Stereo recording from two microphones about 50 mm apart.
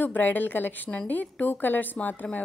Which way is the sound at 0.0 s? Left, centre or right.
Left.